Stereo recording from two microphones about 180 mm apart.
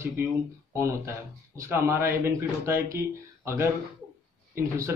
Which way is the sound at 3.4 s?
15° right (ahead or behind).